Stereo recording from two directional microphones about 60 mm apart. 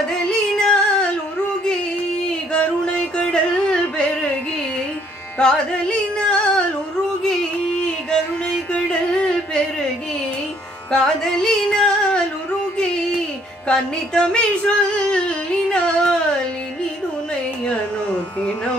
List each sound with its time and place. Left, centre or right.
0.3 s music: centre
2.5 s music: centre
5.4 s carnatic music: centre
7.8 s music: centre
10.9 s music: centre
13.7 s a sound: centre